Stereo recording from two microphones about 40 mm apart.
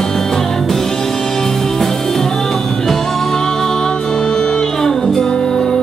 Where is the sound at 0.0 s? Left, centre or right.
Centre.